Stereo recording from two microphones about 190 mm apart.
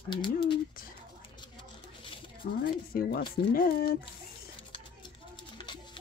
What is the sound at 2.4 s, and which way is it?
Speech, 55° left (ahead or behind).